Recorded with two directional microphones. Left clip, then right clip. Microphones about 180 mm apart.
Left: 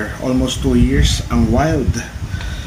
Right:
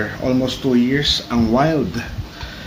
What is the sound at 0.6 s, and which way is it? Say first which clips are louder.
Rub: right 2 dB; 15° left (ahead or behind).